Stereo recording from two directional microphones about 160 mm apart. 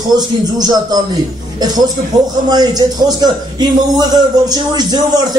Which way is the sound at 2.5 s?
25° right (ahead or behind).